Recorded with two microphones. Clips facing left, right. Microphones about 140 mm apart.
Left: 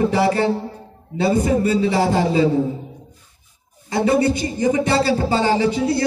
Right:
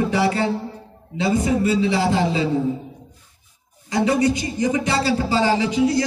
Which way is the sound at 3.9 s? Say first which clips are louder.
Left 1 dB; 30° left (ahead or behind).